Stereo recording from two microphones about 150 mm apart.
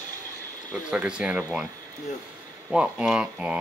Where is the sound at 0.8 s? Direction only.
5° right (ahead or behind).